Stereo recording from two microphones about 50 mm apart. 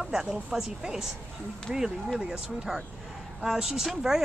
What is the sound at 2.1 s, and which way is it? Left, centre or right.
Speech, centre.